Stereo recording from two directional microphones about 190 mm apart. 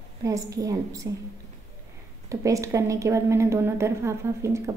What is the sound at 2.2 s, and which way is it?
A woman's voice, 15° right (ahead or behind).